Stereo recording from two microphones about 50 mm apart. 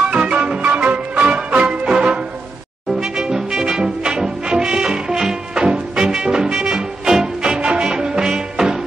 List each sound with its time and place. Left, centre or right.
0.1 s music: right